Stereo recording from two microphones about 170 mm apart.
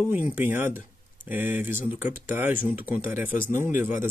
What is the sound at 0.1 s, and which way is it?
Speech, 10° right (ahead or behind).